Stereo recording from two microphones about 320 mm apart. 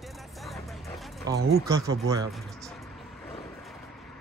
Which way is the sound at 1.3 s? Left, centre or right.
Centre.